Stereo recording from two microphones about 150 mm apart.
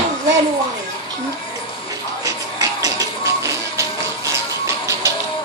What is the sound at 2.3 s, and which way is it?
Music, 25° right (ahead or behind).